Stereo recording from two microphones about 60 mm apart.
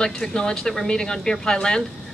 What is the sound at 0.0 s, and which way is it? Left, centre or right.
A woman's voice, centre.